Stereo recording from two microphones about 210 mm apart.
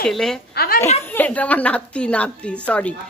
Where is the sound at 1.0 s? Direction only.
10° left (ahead or behind).